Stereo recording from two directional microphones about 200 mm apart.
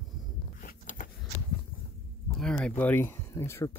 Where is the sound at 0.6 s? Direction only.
40° left (ahead or behind).